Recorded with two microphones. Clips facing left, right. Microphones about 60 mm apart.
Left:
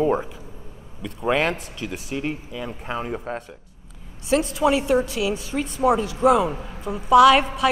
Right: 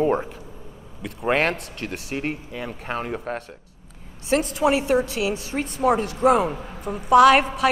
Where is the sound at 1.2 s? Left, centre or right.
Right.